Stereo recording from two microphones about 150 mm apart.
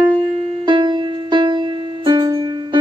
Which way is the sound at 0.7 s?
30° right (ahead or behind).